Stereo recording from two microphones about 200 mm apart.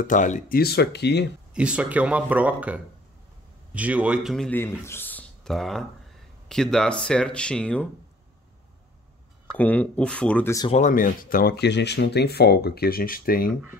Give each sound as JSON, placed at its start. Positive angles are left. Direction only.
{"t": 0.0, "sound": "speech", "side_deg": 40}
{"t": 1.5, "sound": "a man's voice", "side_deg": -5}
{"t": 9.6, "sound": "speech", "side_deg": 10}
{"t": 10.7, "sound": "speech", "side_deg": 40}